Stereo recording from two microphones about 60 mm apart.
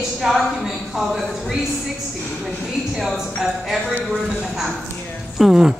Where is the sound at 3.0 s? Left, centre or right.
Centre.